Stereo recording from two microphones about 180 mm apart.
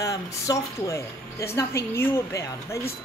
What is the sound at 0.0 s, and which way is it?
A woman's voice, 20° left (ahead or behind).